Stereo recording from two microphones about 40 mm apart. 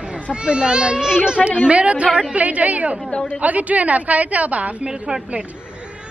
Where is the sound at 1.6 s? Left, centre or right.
Right.